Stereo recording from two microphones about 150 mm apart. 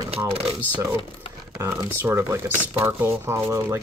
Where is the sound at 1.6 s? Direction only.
15° right (ahead or behind).